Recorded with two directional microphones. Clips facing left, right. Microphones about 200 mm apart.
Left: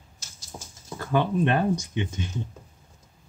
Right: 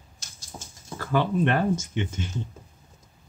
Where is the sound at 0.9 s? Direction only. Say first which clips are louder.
Even; 20° left (ahead or behind).